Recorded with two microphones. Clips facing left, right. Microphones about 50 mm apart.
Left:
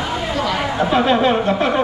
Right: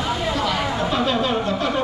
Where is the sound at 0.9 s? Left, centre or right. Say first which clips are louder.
Left 7 dB; left.